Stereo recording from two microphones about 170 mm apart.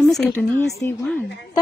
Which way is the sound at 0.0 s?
5° left (ahead or behind).